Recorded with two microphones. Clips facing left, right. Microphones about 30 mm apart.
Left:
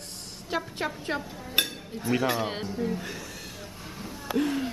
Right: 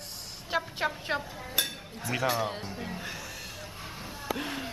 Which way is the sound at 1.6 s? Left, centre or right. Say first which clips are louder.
Left 4 dB; left.